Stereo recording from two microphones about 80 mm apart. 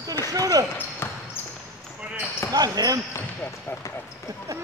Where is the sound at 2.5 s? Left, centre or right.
Right.